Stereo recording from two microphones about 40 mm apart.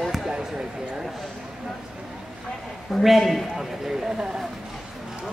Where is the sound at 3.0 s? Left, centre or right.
Centre.